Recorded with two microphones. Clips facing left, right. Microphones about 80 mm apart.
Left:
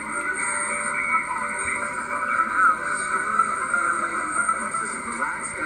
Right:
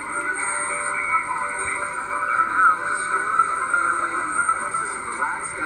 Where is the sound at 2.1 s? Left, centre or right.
Centre.